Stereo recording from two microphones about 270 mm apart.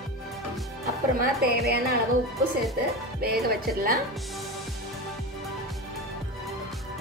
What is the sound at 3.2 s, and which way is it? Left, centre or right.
Speech, right.